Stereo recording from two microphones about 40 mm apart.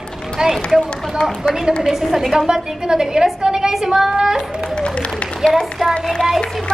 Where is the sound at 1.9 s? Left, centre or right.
Centre.